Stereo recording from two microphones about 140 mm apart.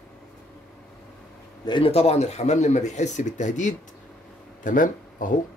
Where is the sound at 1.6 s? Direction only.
35° left (ahead or behind).